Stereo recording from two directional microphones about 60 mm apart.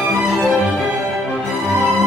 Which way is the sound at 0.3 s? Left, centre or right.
Centre.